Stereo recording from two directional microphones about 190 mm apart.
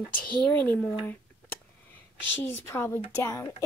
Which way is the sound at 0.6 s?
10° left (ahead or behind).